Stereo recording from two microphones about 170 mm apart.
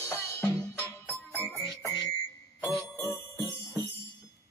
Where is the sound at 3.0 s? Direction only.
20° left (ahead or behind).